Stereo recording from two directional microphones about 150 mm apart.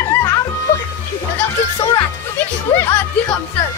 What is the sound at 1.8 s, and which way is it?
A child's voice, 25° left (ahead or behind).